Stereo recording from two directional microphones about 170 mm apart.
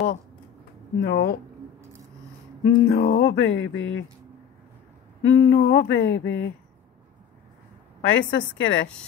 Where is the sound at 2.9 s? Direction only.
40° left (ahead or behind).